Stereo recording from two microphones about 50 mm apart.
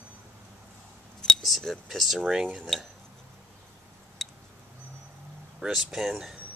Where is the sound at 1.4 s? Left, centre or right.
Centre.